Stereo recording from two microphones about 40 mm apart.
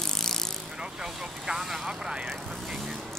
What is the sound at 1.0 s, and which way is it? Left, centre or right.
Speech, centre.